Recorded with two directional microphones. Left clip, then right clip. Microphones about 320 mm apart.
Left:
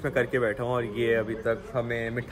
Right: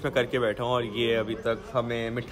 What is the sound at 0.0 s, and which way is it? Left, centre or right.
A man's voice, centre.